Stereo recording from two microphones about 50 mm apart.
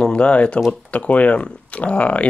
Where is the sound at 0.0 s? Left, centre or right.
Left.